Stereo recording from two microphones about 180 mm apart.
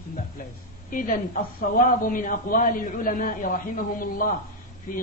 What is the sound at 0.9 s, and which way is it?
Speech, 50° left (ahead or behind).